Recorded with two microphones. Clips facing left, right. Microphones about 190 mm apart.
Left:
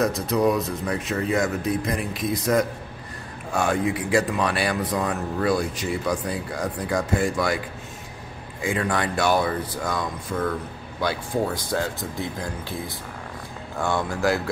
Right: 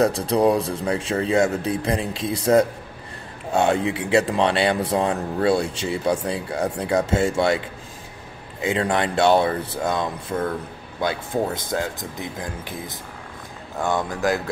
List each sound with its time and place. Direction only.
0.0 s speech: 30° right (ahead or behind)